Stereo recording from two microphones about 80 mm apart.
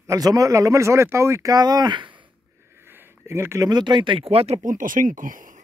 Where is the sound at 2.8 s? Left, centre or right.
Right.